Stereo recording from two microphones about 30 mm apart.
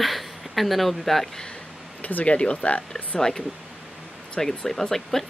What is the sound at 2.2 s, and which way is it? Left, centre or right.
Speech, left.